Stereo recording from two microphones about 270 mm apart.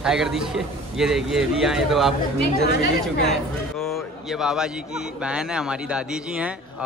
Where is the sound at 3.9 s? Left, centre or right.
Centre.